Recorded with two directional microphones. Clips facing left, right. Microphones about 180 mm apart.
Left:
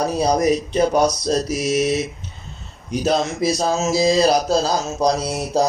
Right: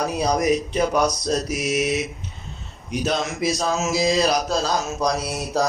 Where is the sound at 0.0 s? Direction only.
30° left (ahead or behind).